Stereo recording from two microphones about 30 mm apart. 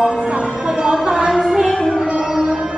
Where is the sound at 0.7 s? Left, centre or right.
Right.